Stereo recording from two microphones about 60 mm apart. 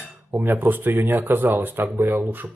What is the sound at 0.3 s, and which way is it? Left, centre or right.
Speech, right.